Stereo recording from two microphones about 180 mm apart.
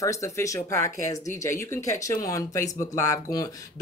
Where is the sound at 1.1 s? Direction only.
40° left (ahead or behind).